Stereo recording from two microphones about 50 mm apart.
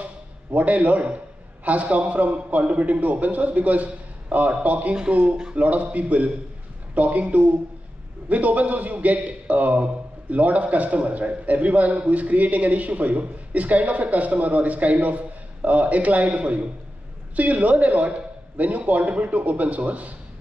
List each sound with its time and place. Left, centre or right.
0.6 s a man's voice: right